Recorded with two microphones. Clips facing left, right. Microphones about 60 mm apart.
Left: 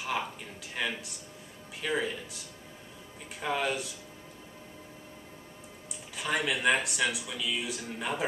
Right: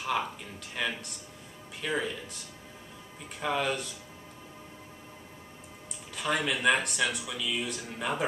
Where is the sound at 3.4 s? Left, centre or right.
Centre.